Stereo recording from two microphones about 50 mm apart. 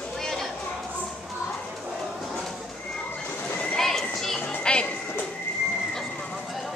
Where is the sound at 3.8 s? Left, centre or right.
Centre.